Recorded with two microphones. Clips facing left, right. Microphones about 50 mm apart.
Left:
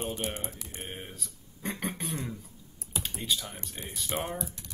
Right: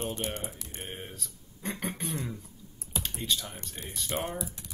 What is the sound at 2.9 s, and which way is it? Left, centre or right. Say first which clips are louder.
Typing: even; centre.